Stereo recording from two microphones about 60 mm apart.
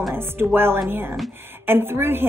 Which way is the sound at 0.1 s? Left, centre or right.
Right.